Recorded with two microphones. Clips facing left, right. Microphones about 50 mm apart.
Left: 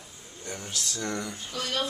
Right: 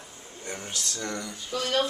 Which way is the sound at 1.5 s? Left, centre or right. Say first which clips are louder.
Right 6 dB; right.